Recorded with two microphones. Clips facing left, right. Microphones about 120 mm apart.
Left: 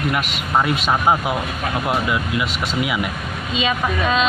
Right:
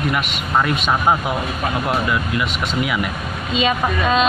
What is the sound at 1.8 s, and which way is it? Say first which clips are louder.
Speech: left 1 dB; 10° left (ahead or behind).